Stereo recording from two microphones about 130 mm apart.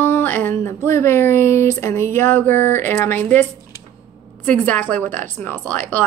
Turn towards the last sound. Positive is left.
turn(degrees=15)  # may be behind; listen again after turning